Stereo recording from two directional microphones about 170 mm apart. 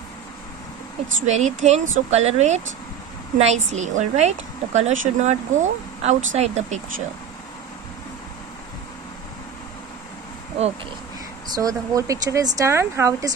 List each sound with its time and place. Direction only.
1.2 s a woman's voice: 45° right (ahead or behind)
11.5 s speech: 20° right (ahead or behind)